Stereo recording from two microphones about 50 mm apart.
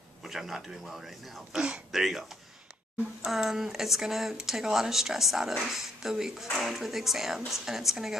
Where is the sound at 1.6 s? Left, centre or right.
Centre.